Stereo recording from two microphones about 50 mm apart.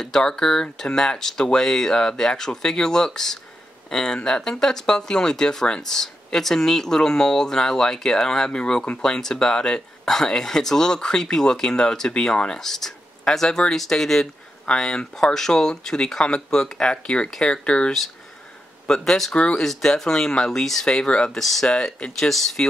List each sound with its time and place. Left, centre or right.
0.0 s speech: centre
19.3 s speech: left
19.6 s speech: centre
21.3 s speech: centre
21.6 s speech: centre
22.1 s speech: centre